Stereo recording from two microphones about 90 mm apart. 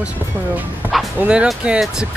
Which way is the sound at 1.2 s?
10° right (ahead or behind).